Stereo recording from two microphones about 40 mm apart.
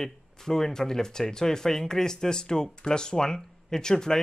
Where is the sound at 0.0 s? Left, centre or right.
Centre.